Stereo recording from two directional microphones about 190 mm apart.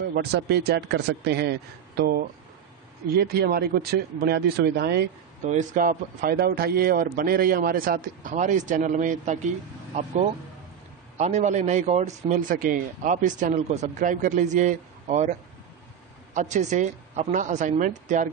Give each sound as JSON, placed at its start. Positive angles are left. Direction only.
{"t": 0.1, "sound": "speech", "side_deg": -60}
{"t": 5.5, "sound": "a man's voice", "side_deg": -40}
{"t": 11.1, "sound": "a man's voice", "side_deg": -35}
{"t": 16.3, "sound": "a man's voice", "side_deg": -40}